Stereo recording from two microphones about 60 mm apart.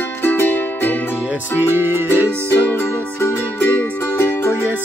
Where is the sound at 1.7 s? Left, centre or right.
Right.